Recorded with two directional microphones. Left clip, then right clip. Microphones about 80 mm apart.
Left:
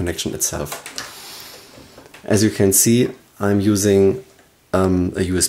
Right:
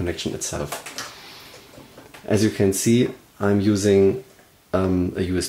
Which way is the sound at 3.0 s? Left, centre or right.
Left.